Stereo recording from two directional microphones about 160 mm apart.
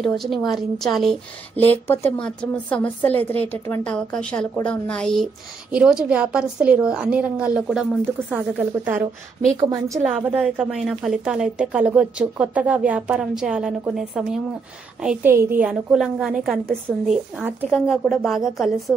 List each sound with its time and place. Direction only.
0.0 s a woman's voice: centre (ahead or behind)
1.6 s a woman's voice: 10° left (ahead or behind); by 9.9 s 20° right (ahead or behind)
10.0 s a woman's voice: 10° right (ahead or behind)